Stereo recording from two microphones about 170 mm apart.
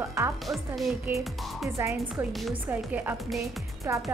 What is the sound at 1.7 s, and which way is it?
Speech, 15° right (ahead or behind).